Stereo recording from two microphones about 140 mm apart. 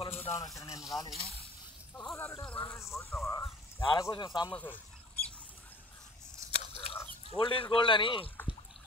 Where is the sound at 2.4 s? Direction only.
5° left (ahead or behind).